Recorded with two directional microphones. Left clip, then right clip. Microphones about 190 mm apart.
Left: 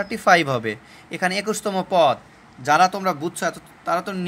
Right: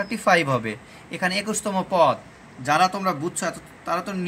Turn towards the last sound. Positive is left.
turn(degrees=30)  # may be behind; listen again after turning